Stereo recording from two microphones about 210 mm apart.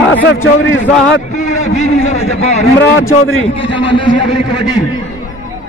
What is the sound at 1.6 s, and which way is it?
A man's voice, 30° left (ahead or behind).